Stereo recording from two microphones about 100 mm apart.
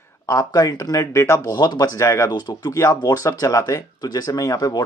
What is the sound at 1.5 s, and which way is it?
Speech, 45° left (ahead or behind).